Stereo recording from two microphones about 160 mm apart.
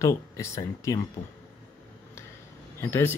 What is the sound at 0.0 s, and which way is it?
Speech, 20° left (ahead or behind).